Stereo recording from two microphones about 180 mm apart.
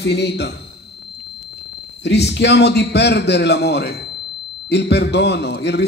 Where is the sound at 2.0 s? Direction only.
70° left (ahead or behind).